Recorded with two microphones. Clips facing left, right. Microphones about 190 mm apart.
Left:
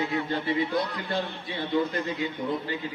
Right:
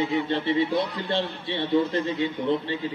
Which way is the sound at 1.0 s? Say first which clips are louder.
Right 3 dB; 25° right (ahead or behind).